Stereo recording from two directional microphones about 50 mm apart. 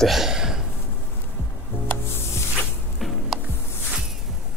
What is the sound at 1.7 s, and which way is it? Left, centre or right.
Music, left.